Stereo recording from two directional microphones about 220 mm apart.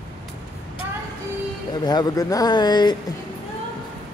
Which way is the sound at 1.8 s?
20° left (ahead or behind).